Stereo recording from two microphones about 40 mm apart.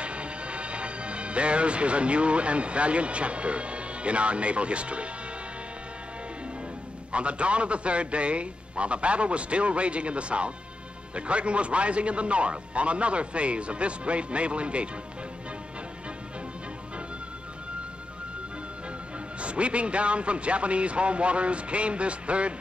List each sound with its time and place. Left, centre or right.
0.0 s speech: right
7.1 s a man's voice: right
19.4 s a man's voice: right